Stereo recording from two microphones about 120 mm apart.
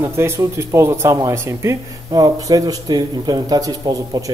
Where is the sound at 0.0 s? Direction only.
20° right (ahead or behind).